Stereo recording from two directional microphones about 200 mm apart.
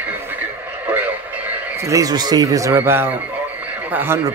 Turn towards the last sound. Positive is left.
turn(degrees=-10)  # may be behind; listen again after turning